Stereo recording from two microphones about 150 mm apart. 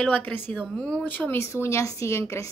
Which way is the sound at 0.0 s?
10° left (ahead or behind).